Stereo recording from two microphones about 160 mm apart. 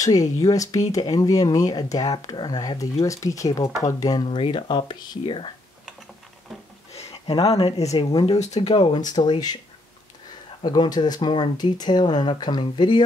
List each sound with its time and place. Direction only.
0.0 s speech: 20° left (ahead or behind)
6.9 s speech: 40° left (ahead or behind)
8.1 s speech: 25° left (ahead or behind)
8.4 s speech: 45° left (ahead or behind); by 9.6 s 25° left (ahead or behind)
10.6 s speech: 25° left (ahead or behind)